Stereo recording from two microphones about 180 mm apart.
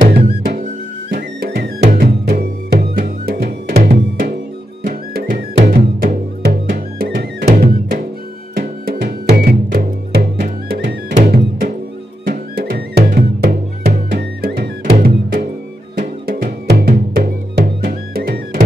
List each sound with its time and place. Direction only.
0.1 s music: 55° right (ahead or behind)
8.5 s music: 60° right (ahead or behind)